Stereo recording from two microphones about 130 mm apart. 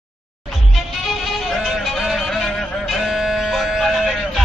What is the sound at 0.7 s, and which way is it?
Music, centre (ahead or behind).